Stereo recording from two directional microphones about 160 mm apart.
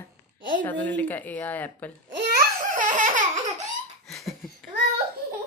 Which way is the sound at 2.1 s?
90° right.